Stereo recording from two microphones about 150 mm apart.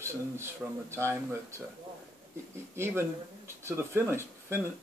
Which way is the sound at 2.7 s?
15° right (ahead or behind).